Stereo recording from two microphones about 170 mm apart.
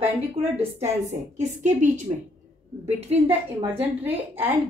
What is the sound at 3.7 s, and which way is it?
Speech, 10° right (ahead or behind).